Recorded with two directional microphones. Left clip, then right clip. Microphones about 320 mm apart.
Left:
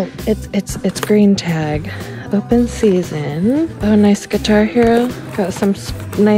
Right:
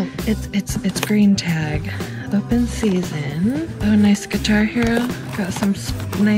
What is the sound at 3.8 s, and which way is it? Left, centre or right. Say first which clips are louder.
Speech: left 3 dB; centre.